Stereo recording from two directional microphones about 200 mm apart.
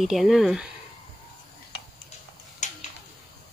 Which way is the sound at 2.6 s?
35° left (ahead or behind).